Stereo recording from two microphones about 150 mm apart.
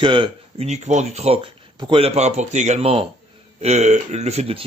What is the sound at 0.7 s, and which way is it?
A man's voice, 50° right (ahead or behind).